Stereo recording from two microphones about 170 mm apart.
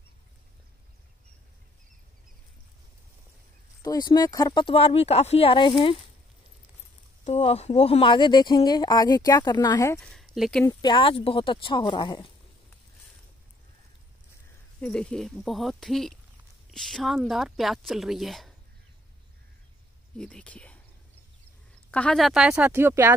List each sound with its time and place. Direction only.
3.8 s speech: 20° left (ahead or behind)
7.2 s speech: 40° left (ahead or behind); by 9.9 s 20° left (ahead or behind)
9.9 s speech: centre (ahead or behind)
10.6 s speech: 25° left (ahead or behind)
14.8 s speech: 5° left (ahead or behind)
20.2 s speech: 5° left (ahead or behind)
21.9 s speech: 5° left (ahead or behind); by 23.1 s 15° right (ahead or behind)